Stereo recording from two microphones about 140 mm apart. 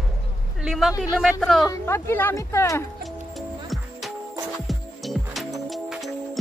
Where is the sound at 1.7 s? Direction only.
20° left (ahead or behind).